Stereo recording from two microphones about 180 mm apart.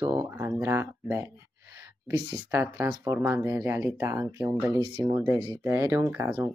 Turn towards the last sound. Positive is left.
turn(degrees=-10)  # may be behind; listen again after turning